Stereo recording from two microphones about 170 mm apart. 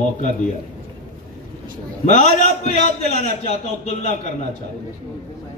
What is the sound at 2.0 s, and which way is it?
Speech, 45° left (ahead or behind).